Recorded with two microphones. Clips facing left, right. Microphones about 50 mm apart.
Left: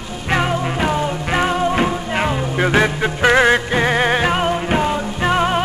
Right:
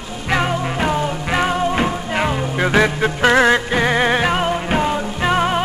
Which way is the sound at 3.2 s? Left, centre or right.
Left.